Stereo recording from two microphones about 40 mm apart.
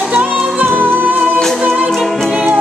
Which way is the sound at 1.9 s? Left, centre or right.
Centre.